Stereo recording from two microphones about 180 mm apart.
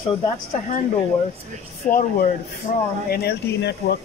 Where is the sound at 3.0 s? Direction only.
60° left (ahead or behind).